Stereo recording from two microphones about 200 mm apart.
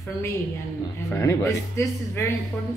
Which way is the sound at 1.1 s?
15° left (ahead or behind).